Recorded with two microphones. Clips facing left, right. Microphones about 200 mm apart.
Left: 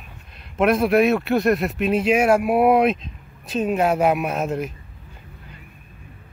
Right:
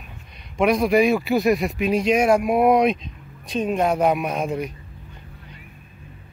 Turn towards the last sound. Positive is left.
turn(degrees=0)  # may be behind; listen again after turning